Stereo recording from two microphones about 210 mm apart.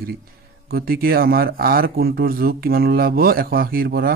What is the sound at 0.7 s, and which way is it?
Speech, 45° right (ahead or behind).